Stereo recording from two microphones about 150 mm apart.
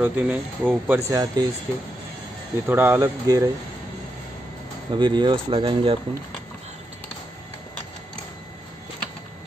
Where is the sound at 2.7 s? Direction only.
15° right (ahead or behind).